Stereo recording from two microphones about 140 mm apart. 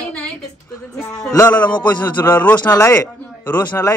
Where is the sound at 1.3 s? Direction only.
15° left (ahead or behind).